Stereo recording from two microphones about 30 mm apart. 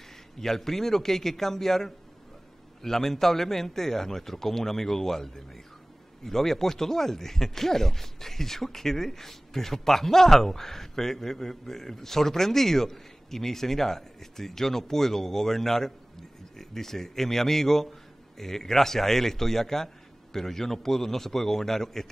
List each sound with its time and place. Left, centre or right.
0.4 s speech: centre